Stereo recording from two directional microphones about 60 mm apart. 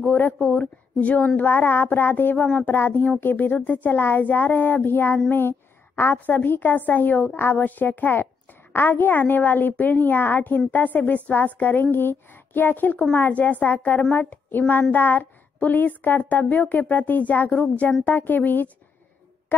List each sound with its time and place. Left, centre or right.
0.4 s a woman's voice: left
2.3 s a woman's voice: centre
2.7 s a woman's voice: left
5.3 s a sound: left
6.1 s a woman's voice: left